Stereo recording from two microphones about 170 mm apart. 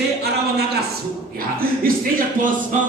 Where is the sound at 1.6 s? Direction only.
55° right (ahead or behind).